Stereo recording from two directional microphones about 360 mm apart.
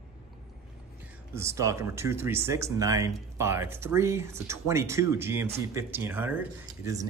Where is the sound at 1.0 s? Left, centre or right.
Centre.